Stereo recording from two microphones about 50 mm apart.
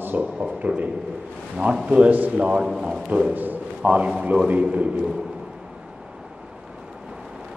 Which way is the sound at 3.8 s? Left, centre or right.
Right.